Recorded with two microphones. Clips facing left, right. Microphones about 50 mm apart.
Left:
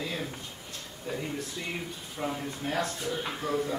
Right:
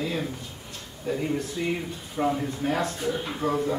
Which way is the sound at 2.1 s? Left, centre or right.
Centre.